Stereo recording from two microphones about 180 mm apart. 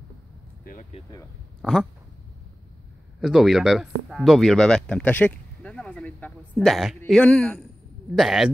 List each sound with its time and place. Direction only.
0.7 s speech: 45° left (ahead or behind)
1.6 s speech: centre (ahead or behind)
3.2 s speech: centre (ahead or behind)